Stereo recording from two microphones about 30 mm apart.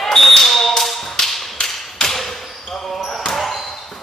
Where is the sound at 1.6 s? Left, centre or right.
Centre.